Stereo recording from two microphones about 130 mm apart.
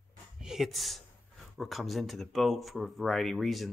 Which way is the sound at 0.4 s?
5° right (ahead or behind).